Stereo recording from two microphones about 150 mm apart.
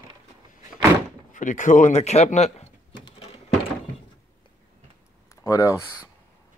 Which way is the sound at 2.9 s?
30° left (ahead or behind).